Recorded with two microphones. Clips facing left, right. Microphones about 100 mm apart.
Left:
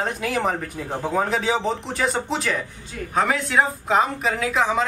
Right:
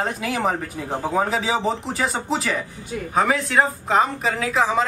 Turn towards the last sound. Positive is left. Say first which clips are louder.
# right 1 dB
turn(degrees=0)  # may be behind; listen again after turning